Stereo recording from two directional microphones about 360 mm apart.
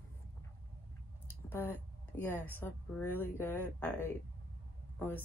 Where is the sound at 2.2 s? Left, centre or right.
Centre.